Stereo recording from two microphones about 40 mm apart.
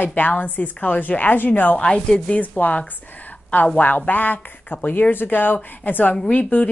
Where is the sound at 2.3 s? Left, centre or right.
Left.